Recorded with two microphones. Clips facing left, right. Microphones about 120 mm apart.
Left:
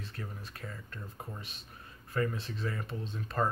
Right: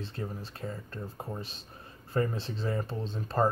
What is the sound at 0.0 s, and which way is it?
Speech, 30° right (ahead or behind).